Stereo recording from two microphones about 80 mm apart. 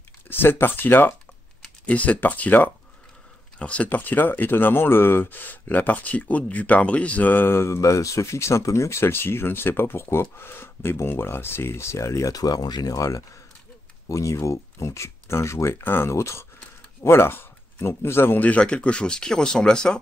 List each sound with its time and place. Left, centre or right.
0.3 s speech: left; by 20.0 s centre